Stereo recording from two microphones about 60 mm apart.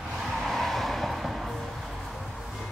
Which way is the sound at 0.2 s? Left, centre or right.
Centre.